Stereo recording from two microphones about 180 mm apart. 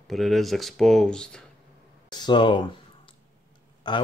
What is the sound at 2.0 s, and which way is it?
Speech, 25° left (ahead or behind).